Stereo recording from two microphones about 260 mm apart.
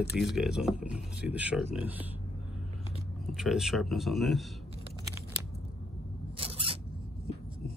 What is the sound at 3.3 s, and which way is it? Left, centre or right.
Speech, centre.